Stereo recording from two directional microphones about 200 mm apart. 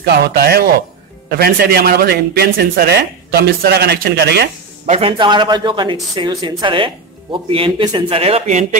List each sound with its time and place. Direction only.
0.0 s speech: 50° right (ahead or behind)
4.8 s speech: 30° right (ahead or behind)